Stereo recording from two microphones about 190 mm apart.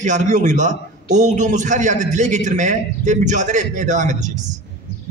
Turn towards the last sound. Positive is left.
turn(degrees=-40)  # may be behind; listen again after turning